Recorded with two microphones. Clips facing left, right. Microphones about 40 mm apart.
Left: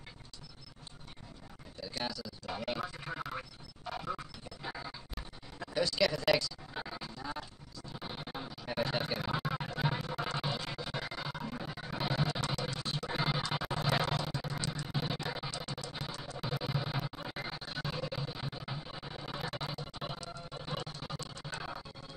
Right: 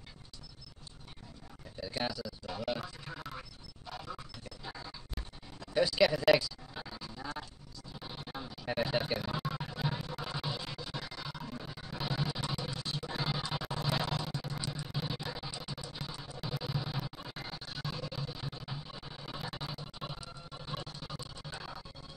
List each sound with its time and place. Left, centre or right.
1.8 s a sound: centre
2.4 s music: centre
3.3 s a sound: left
5.8 s a sound: centre
6.7 s music: centre
8.5 s a sound: centre
9.4 s music: centre
14.1 s music: centre
16.0 s music: centre
16.3 s music: centre
21.2 s music: centre
21.5 s music: centre